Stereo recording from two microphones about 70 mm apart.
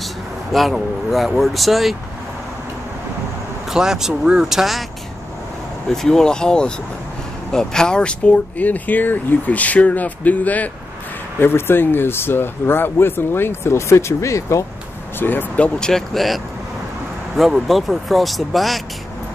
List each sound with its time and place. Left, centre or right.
0.5 s speech: centre
3.7 s speech: centre
5.9 s speech: centre; by 14.6 s left
15.1 s speech: left
15.9 s speech: centre
17.4 s speech: centre